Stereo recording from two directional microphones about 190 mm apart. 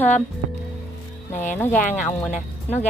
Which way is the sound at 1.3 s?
40° left (ahead or behind).